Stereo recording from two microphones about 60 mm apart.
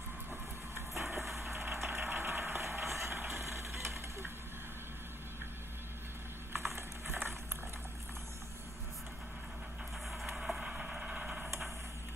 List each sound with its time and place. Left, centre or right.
0.3 s vehicle: right
1.2 s vehicle: centre
1.5 s vehicle: right
1.9 s engine: right
2.9 s vehicle: right
6.5 s a sound: right
10.1 s vehicle: centre